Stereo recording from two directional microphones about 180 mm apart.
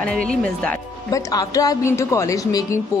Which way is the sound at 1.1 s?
20° left (ahead or behind).